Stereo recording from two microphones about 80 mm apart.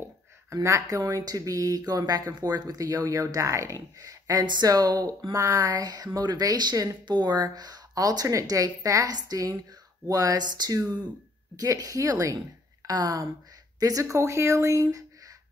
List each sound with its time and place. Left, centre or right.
0.5 s speech: right
12.8 s speech: right